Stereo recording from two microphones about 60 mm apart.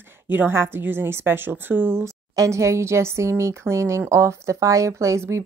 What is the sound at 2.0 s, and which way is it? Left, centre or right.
A woman's voice, right.